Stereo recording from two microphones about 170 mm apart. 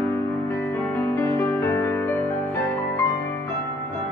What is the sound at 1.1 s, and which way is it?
Music, 15° left (ahead or behind).